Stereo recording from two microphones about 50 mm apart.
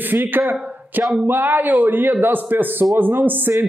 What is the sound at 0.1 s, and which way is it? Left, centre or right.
Speech, right.